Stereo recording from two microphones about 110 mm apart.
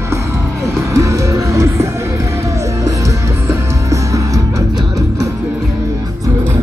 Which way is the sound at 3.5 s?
30° right (ahead or behind).